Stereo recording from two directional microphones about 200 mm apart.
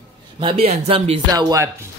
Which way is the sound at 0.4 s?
25° right (ahead or behind).